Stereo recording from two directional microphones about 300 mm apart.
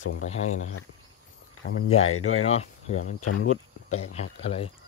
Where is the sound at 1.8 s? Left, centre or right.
Left.